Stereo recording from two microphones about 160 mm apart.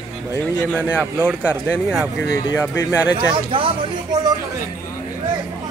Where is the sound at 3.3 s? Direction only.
35° right (ahead or behind).